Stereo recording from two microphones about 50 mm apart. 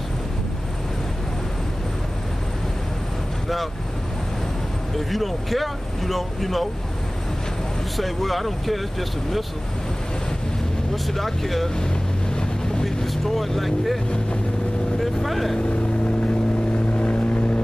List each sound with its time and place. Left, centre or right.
4.9 s speech: centre
8.0 s speech: centre
11.1 s speech: centre
11.7 s boat: centre
12.8 s speech: centre
15.2 s speech: centre
16.9 s vehicle: left